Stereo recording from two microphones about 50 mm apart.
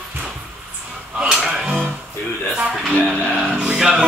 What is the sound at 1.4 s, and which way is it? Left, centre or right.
Music, centre.